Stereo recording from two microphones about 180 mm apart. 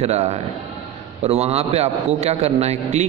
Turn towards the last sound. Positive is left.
turn(degrees=-35)  # may be behind; listen again after turning